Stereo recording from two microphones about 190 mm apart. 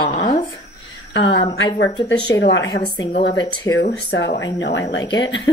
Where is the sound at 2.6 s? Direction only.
25° left (ahead or behind).